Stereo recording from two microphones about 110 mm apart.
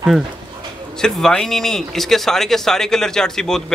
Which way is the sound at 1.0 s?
5° left (ahead or behind).